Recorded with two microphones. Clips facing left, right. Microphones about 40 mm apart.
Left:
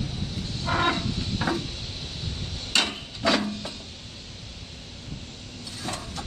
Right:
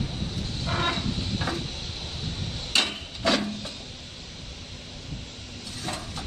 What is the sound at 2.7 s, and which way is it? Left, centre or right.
Hammer, centre.